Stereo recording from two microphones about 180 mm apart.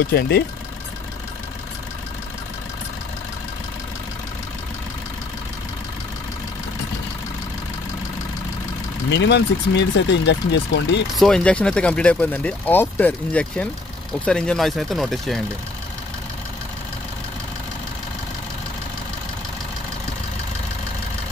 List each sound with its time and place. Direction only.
0.0 s speech: 60° left (ahead or behind)
9.1 s speech: 75° left (ahead or behind)
11.1 s speech: 5° left (ahead or behind)